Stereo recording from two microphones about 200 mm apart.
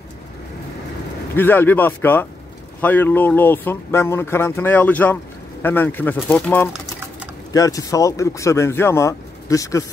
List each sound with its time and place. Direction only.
1.3 s speech: 10° left (ahead or behind)